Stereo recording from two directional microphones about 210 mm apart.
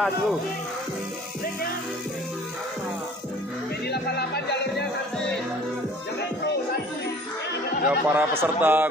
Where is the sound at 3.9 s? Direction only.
50° left (ahead or behind).